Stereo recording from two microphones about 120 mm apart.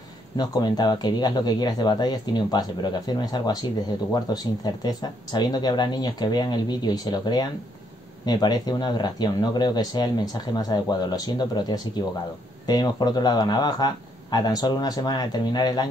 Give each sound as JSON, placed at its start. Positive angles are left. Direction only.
{"t": 0.4, "sound": "speech", "side_deg": 35}